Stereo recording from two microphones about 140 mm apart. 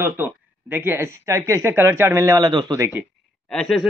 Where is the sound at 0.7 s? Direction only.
15° right (ahead or behind).